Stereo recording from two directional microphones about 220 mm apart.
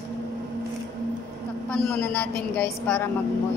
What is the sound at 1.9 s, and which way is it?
A woman's voice, 5° left (ahead or behind).